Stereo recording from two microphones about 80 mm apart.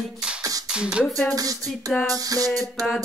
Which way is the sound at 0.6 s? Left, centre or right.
Centre.